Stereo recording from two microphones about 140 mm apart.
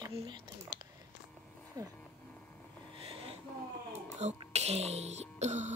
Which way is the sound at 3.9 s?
55° right (ahead or behind).